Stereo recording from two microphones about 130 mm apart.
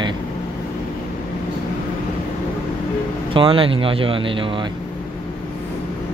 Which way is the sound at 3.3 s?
45° right (ahead or behind).